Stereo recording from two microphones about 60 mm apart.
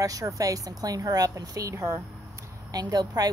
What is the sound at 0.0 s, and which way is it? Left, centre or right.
A woman's voice, right.